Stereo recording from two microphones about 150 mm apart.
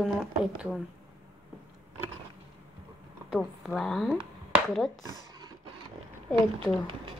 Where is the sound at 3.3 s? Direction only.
Centre (ahead or behind).